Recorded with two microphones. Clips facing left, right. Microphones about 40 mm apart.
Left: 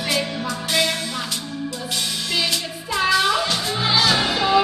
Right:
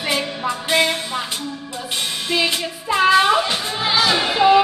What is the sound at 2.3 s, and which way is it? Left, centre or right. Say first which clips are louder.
Music: right 5 dB; right.